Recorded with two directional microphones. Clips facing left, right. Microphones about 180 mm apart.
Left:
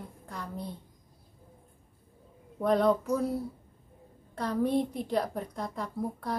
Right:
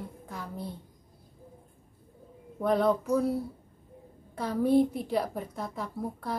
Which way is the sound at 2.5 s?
Centre (ahead or behind).